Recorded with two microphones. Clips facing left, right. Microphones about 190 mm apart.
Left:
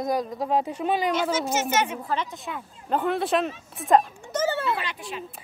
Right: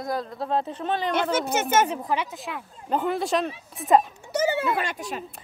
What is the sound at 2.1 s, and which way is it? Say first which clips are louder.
Speech: right 1 dB; 10° right (ahead or behind).